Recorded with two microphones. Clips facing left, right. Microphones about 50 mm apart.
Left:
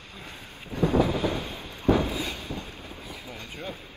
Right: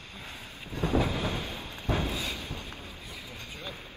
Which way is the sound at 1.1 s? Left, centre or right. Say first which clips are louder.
Left 4 dB; left.